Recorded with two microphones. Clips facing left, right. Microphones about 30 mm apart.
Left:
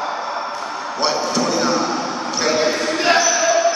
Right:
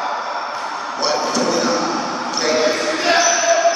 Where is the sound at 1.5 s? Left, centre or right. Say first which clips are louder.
Even; centre.